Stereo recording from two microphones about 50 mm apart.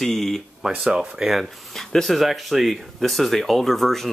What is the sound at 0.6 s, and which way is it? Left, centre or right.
Speech, centre.